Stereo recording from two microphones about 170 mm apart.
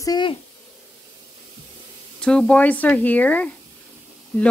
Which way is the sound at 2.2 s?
5° left (ahead or behind).